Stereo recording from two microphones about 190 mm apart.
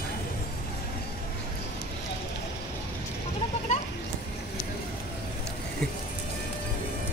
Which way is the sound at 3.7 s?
40° left (ahead or behind).